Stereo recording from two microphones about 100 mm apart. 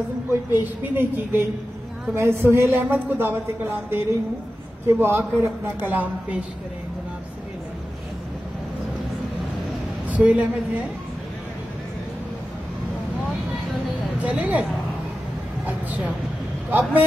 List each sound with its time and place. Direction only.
0.3 s speech: 25° right (ahead or behind)
10.0 s a woman's voice: 15° right (ahead or behind)
14.2 s speech: 15° right (ahead or behind)